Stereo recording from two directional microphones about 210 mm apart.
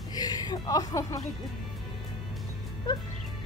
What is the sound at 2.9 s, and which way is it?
Music, 25° left (ahead or behind).